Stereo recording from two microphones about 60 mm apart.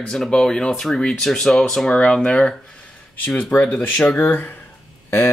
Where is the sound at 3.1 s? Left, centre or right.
Left.